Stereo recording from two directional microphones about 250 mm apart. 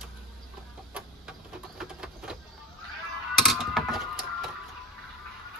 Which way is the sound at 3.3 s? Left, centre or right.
Centre.